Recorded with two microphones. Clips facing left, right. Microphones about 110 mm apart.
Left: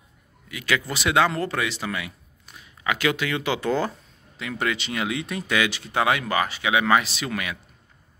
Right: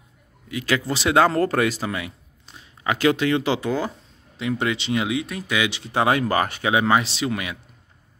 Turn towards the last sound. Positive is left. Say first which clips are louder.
# right 3 dB
turn(degrees=-25)  # may be behind; listen again after turning